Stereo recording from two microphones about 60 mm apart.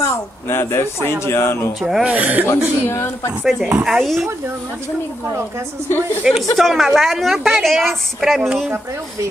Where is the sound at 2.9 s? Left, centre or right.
Left.